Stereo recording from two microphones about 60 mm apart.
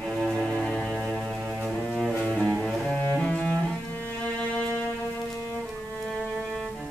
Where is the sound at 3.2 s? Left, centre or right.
Centre.